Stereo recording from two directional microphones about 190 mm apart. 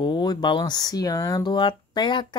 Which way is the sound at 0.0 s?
25° left (ahead or behind).